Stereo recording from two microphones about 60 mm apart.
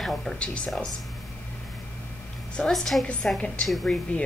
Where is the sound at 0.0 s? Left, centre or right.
Centre.